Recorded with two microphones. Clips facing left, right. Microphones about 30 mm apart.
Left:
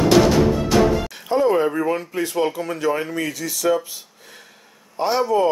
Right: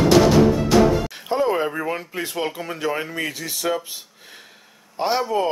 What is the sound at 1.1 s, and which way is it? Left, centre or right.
Speech, centre.